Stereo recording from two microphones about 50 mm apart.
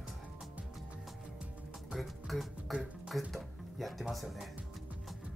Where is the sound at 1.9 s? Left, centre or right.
Centre.